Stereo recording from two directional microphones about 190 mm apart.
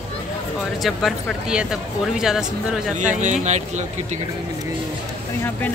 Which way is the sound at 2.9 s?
40° right (ahead or behind).